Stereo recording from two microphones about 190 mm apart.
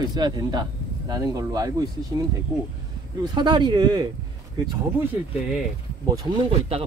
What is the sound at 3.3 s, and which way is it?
Speech, 20° right (ahead or behind).